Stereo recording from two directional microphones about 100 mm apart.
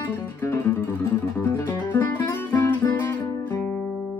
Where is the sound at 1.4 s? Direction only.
20° left (ahead or behind).